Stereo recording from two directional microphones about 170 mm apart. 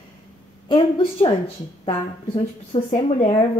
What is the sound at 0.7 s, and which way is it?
Speech, 30° left (ahead or behind).